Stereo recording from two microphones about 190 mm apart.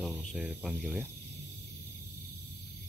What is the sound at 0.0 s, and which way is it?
Speech, centre (ahead or behind).